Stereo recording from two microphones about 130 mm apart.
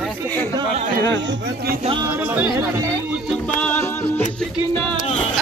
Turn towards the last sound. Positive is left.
turn(degrees=10)  # may be behind; listen again after turning